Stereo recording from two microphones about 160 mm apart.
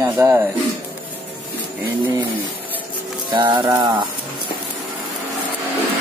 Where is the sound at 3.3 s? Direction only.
25° right (ahead or behind).